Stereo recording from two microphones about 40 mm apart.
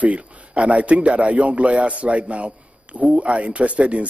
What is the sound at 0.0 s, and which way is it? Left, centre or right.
A man's voice, right.